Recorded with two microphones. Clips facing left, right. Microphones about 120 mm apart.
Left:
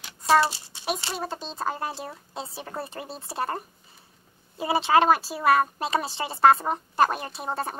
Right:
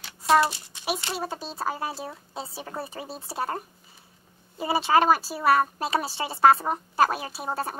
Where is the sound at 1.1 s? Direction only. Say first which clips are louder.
Right 1 dB; 5° right (ahead or behind).